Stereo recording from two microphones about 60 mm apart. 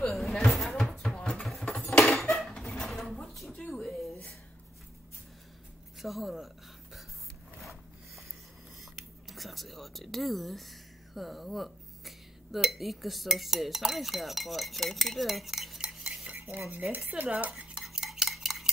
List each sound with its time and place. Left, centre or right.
0.0 s a sound: centre
1.7 s dishes: centre
2.1 s cutlery: centre
2.8 s a sound: centre
5.9 s speech: centre
9.3 s speech: centre
16.0 s cutlery: centre
16.3 s cutlery: right
16.9 s cutlery: right
17.6 s cutlery: centre